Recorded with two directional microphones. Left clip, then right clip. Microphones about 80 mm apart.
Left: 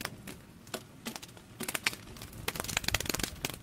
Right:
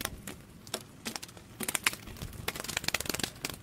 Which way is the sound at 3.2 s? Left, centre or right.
Centre.